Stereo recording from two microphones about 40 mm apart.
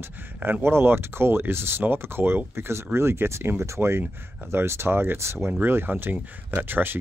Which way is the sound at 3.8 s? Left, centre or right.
Right.